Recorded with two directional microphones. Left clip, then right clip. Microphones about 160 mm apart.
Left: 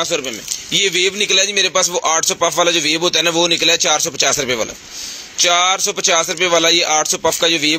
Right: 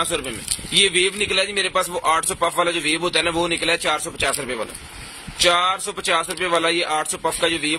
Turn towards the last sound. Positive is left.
turn(degrees=30)  # may be behind; listen again after turning